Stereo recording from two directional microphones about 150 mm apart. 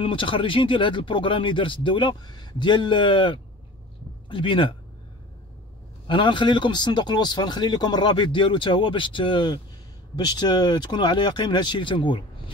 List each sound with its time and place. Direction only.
0.0 s speech: 35° left (ahead or behind)
6.0 s speech: 35° left (ahead or behind)